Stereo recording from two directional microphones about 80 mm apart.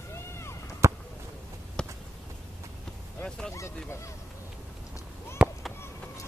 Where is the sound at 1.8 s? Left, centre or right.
Centre.